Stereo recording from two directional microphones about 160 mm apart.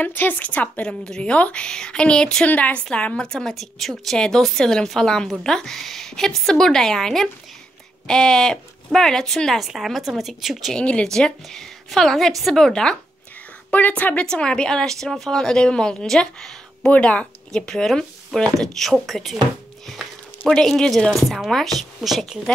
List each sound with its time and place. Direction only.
0.0 s a woman's voice: 10° left (ahead or behind)